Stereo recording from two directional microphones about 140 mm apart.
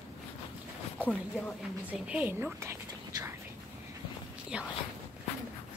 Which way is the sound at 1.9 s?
10° right (ahead or behind).